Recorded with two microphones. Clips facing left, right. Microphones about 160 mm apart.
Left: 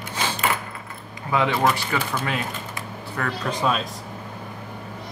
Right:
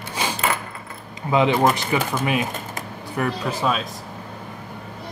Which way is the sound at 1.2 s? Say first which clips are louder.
Right 3 dB; 20° right (ahead or behind).